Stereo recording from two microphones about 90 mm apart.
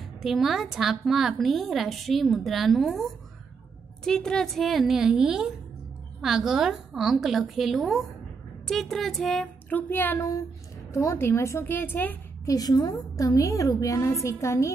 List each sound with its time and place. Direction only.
0.2 s a woman's voice: 5° right (ahead or behind)
9.7 s a woman's voice: 20° left (ahead or behind)
10.9 s a woman's voice: 35° left (ahead or behind)
12.4 s a woman's voice: 45° left (ahead or behind)